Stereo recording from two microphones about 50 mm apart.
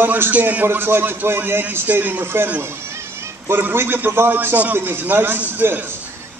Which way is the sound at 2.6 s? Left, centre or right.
Right.